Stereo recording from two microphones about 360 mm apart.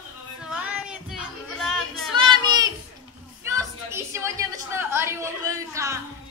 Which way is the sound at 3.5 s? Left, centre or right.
Centre.